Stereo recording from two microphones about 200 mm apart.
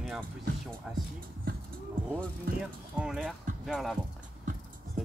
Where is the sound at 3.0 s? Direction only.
5° right (ahead or behind).